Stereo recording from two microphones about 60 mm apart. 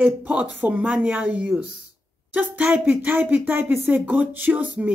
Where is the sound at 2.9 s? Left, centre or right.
Right.